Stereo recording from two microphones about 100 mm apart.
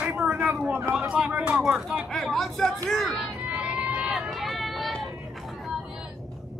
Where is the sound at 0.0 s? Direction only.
10° right (ahead or behind).